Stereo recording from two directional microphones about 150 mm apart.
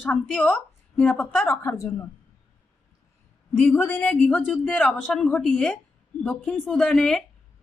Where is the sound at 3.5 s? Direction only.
10° left (ahead or behind).